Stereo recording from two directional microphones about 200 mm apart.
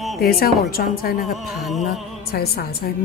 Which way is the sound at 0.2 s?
50° left (ahead or behind).